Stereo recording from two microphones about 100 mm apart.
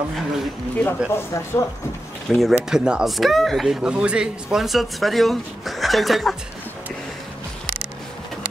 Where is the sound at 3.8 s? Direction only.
10° right (ahead or behind).